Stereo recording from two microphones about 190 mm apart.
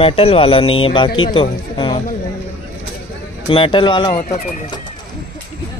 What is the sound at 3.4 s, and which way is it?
Speech, 30° left (ahead or behind).